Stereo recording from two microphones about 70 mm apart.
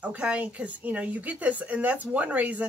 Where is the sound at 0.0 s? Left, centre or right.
Centre.